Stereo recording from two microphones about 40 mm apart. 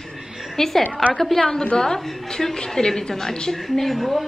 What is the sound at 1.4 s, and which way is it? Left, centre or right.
A woman's voice, centre.